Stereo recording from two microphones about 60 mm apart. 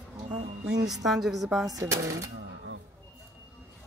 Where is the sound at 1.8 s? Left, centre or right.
Right.